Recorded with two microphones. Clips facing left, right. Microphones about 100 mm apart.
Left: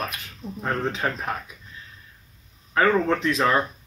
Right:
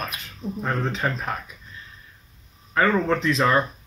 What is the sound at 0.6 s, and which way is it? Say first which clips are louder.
Speech: even; 5° left (ahead or behind).